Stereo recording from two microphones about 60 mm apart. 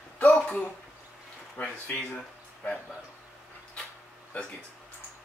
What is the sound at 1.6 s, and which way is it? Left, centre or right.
Speech, left.